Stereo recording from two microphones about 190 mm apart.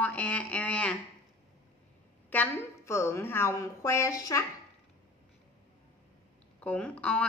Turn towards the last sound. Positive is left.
turn(degrees=5)  # may be behind; listen again after turning